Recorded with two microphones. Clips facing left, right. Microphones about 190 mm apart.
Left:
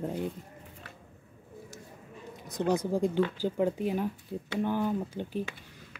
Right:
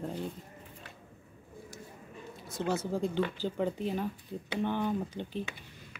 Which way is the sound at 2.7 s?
15° left (ahead or behind).